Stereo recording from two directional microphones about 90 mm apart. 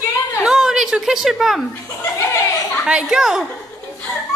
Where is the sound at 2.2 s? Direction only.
35° left (ahead or behind).